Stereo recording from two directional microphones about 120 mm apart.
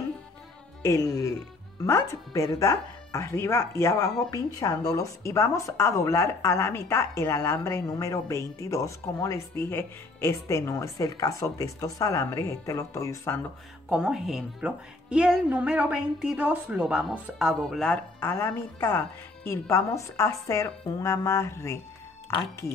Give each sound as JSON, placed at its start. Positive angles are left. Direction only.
{"t": 0.8, "sound": "speech", "side_deg": 25}
{"t": 13.8, "sound": "speech", "side_deg": -5}
{"t": 18.2, "sound": "speech", "side_deg": 20}